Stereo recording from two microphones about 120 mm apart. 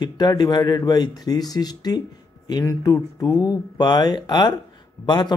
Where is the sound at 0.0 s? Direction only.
35° left (ahead or behind).